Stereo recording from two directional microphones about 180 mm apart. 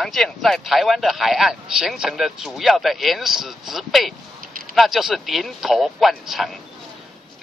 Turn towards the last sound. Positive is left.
turn(degrees=0)  # may be behind; listen again after turning